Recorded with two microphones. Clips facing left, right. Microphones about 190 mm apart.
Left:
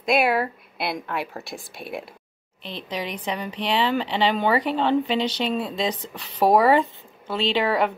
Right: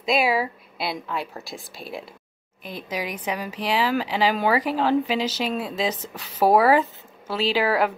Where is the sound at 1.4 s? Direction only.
60° left (ahead or behind).